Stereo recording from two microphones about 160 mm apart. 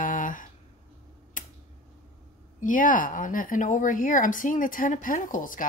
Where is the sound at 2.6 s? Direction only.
55° left (ahead or behind).